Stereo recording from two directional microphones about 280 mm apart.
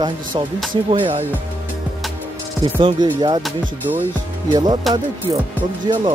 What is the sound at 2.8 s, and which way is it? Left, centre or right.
Speech, centre.